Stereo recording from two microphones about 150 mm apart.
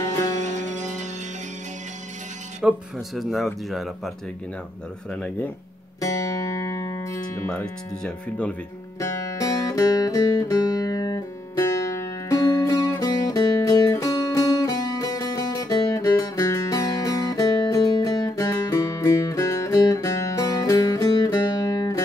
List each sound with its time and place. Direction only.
0.0 s music: 25° left (ahead or behind)
0.4 s music: 50° right (ahead or behind)
2.6 s speech: 5° right (ahead or behind)
5.1 s speech: 5° left (ahead or behind)
5.9 s music: 20° left (ahead or behind)
7.4 s speech: 5° left (ahead or behind)
9.0 s music: 20° left (ahead or behind)